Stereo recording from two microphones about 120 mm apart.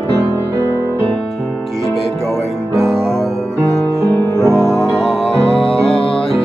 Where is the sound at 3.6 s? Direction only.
25° right (ahead or behind).